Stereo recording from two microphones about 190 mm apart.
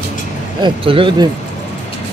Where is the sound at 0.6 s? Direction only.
25° right (ahead or behind).